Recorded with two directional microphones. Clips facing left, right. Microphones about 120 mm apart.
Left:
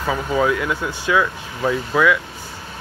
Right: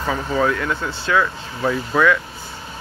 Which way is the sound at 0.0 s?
10° left (ahead or behind).